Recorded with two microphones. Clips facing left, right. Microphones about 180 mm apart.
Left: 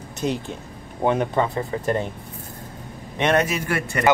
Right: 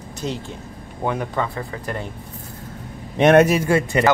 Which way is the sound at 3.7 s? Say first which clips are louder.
Right 7 dB; 20° right (ahead or behind).